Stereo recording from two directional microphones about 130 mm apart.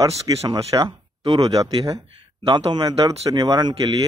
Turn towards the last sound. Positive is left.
turn(degrees=-30)  # may be behind; listen again after turning